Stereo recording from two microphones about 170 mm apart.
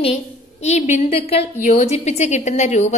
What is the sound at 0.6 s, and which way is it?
A woman's voice, 40° left (ahead or behind).